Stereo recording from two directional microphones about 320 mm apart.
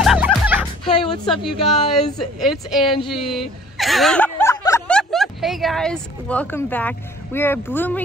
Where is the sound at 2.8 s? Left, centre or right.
Centre.